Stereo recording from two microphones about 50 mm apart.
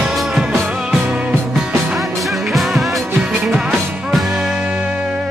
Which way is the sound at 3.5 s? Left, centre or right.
Centre.